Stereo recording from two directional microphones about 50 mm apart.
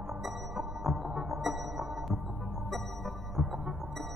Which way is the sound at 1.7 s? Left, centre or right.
Right.